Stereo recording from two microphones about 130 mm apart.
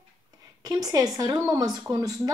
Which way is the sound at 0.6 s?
30° right (ahead or behind).